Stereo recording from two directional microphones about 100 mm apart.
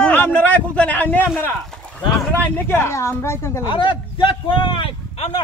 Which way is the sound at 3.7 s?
55° left (ahead or behind).